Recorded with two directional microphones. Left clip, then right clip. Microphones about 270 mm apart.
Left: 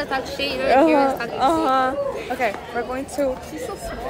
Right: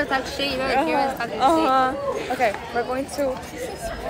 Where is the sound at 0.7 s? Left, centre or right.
Left.